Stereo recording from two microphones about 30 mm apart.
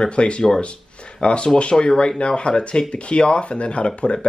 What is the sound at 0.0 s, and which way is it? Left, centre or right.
Speech, left.